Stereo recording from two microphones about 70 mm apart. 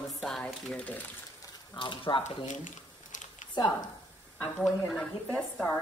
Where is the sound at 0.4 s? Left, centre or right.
Centre.